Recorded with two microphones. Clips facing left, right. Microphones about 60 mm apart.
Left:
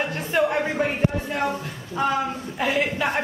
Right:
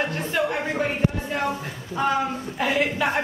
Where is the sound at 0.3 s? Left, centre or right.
Centre.